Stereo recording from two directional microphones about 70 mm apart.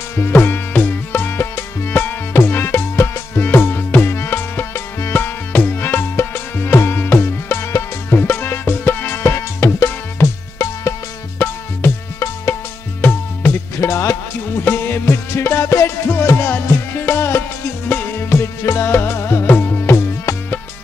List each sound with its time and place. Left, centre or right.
0.1 s music: left
9.2 s music: left
13.7 s music: left
14.6 s music: left
16.1 s music: left